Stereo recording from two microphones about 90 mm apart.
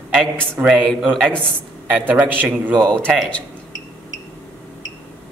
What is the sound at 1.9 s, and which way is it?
Speech, 20° right (ahead or behind).